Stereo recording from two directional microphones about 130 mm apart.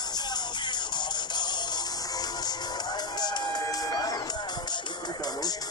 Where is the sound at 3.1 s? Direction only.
30° left (ahead or behind).